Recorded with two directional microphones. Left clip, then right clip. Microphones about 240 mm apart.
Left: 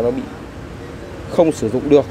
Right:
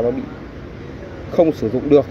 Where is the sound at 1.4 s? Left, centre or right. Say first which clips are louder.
Left 1 dB; centre.